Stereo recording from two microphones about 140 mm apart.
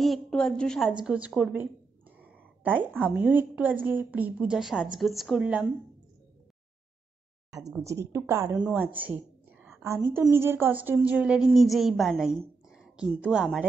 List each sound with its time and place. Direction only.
0.0 s a woman's voice: 5° left (ahead or behind)
7.8 s a woman's voice: 20° right (ahead or behind)
8.5 s a woman's voice: 10° right (ahead or behind)